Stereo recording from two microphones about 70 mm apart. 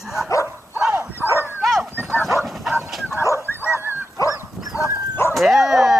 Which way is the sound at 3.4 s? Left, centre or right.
Left.